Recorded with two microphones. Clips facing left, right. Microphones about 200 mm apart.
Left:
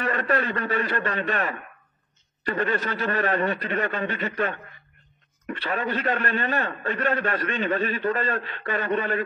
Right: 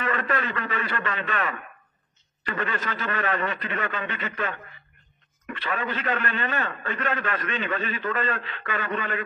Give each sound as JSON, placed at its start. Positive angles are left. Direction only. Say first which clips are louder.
{"t": 0.0, "sound": "a man's voice", "louder": "left 3 dB", "side_deg": 40}
{"t": 5.6, "sound": "a man's voice", "louder": "left 2 dB", "side_deg": 35}